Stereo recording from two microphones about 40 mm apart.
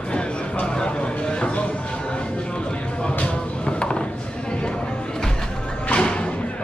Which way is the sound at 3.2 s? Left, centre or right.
Left.